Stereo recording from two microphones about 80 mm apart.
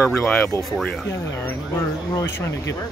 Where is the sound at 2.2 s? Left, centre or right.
Left.